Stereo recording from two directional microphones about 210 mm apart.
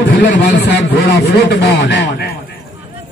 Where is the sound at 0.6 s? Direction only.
55° left (ahead or behind).